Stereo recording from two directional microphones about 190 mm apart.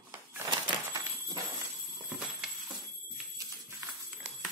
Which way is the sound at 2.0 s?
5° right (ahead or behind).